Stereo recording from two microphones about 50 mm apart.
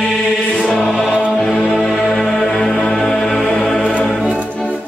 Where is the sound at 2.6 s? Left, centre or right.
Left.